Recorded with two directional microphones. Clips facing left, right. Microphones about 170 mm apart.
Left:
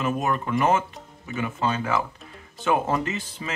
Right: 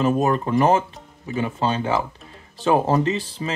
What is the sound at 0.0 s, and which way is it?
Speech, 30° right (ahead or behind).